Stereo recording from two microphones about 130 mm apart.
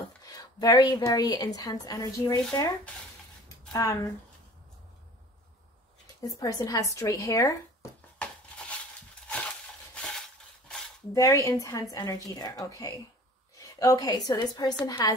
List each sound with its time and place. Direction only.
0.2 s a woman's voice: 30° left (ahead or behind)
3.7 s a woman's voice: 25° left (ahead or behind)
6.0 s a woman's voice: 25° left (ahead or behind)
8.2 s a sound: 10° left (ahead or behind)
10.0 s a sound: 5° left (ahead or behind)
11.1 s a woman's voice: 25° left (ahead or behind)